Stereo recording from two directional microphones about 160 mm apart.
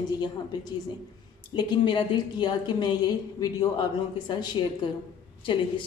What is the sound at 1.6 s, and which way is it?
A woman's voice, 30° left (ahead or behind).